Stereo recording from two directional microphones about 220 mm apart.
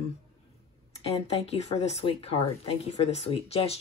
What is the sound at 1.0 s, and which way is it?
A woman's voice, 25° left (ahead or behind).